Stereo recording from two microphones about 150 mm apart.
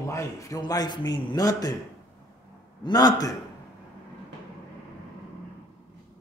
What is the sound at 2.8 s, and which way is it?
Speech, 25° left (ahead or behind).